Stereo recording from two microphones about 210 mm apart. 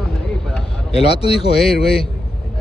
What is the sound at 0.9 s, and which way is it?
Speech, 30° left (ahead or behind).